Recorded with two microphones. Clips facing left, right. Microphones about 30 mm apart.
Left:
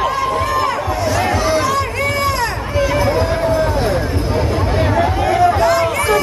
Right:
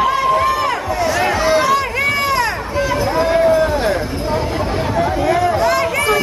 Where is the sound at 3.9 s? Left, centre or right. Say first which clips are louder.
Even; centre.